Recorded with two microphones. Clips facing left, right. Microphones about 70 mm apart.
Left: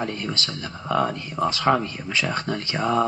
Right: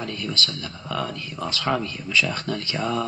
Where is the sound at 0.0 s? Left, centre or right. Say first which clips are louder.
Left 1 dB; left.